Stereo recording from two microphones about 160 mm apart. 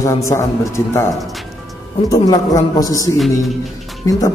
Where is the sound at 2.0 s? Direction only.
20° left (ahead or behind).